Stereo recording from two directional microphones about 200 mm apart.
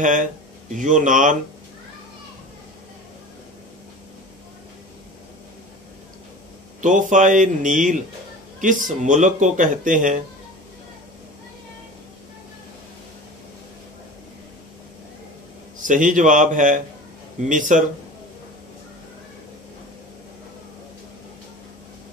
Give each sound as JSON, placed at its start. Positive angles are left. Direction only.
{"t": 0.0, "sound": "speech", "side_deg": -40}
{"t": 6.8, "sound": "speech", "side_deg": -40}
{"t": 15.8, "sound": "speech", "side_deg": -40}